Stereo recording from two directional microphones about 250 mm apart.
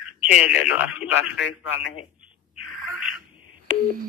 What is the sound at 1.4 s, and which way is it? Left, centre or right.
Speech, left.